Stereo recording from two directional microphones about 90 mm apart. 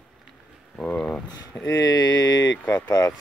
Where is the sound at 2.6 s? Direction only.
20° left (ahead or behind).